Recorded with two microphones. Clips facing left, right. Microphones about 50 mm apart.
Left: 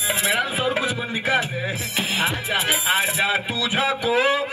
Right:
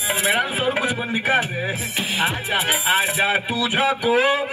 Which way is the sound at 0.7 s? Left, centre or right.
Centre.